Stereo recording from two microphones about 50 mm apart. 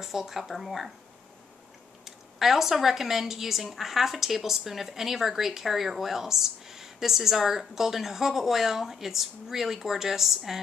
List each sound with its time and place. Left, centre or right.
0.0 s a woman's voice: centre
2.0 s a woman's voice: centre